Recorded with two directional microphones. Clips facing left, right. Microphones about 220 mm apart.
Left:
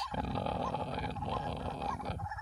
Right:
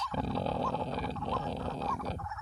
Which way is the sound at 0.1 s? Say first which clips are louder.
Right 3 dB; 30° right (ahead or behind).